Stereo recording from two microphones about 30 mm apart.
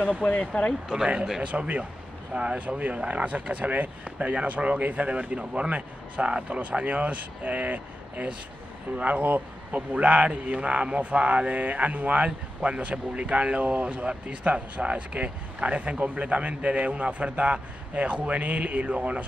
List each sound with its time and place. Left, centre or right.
0.0 s speech: left
1.4 s speech: right
4.2 s speech: right
5.4 s speech: right
5.7 s speech: right
6.6 s speech: right
9.0 s speech: right
9.8 s speech: right
12.6 s speech: right